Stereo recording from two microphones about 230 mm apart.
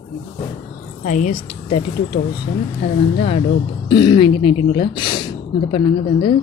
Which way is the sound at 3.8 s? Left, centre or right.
Centre.